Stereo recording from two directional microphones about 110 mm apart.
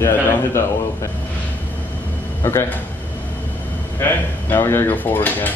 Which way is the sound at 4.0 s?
20° left (ahead or behind).